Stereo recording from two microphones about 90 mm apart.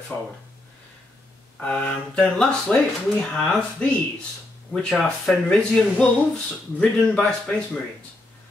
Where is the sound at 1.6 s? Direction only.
10° left (ahead or behind).